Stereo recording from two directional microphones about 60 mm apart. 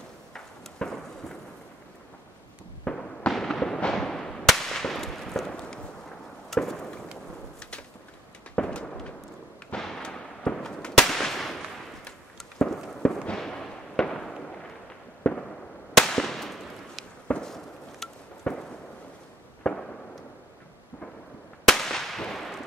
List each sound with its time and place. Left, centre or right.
0.3 s a sound: centre
2.8 s fireworks: centre
5.5 s a sound: centre
6.5 s fireworks: centre
8.5 s firecracker: centre
9.8 s fireworks: centre
16.0 s firecracker: centre
17.3 s fireworks: centre
21.6 s whip: centre
22.3 s a sound: centre